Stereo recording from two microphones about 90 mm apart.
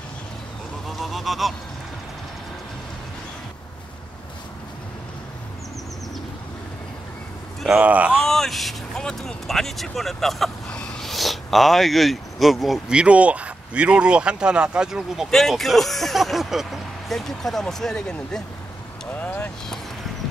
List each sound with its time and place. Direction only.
0.8 s goose: centre (ahead or behind)
7.7 s speech: 15° right (ahead or behind)
8.2 s speech: 5° left (ahead or behind)
19.1 s speech: 20° left (ahead or behind)